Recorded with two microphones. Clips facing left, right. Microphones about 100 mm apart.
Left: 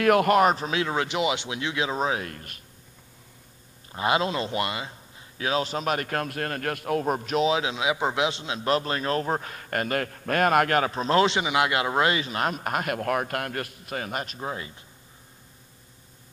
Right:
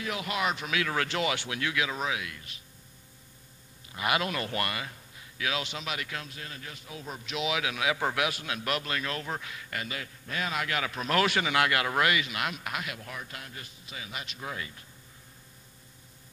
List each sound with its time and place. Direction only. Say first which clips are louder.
0.0 s a man's voice: left 13 dB; 55° left (ahead or behind)
0.7 s speech: left 4 dB; 25° left (ahead or behind); by 2.6 s 50° left (ahead or behind)
3.9 s a man's voice: left 5 dB; 30° left (ahead or behind); by 7.4 s 50° left (ahead or behind)
7.4 s a man's voice: left 2 dB; 30° left (ahead or behind); by 10.9 s 50° left (ahead or behind)
10.9 s a man's voice: left 6 dB; 30° left (ahead or behind)